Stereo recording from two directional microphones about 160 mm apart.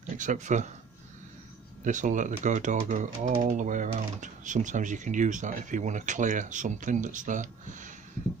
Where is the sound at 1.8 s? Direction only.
50° right (ahead or behind).